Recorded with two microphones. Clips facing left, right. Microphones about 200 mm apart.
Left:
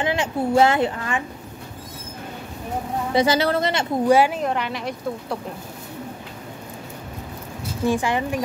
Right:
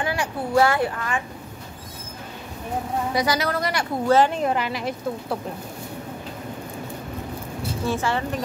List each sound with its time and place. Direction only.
0.0 s speech: 20° left (ahead or behind)
3.1 s speech: 25° left (ahead or behind)
4.1 s a woman's voice: 10° left (ahead or behind)
4.4 s speech: centre (ahead or behind)
7.8 s a woman's voice: 15° left (ahead or behind)